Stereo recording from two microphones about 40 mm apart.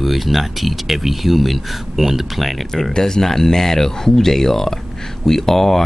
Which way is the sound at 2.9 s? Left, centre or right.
Centre.